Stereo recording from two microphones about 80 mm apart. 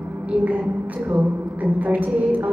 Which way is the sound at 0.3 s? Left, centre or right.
Centre.